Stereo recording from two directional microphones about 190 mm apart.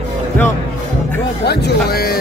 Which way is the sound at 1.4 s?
60° left (ahead or behind).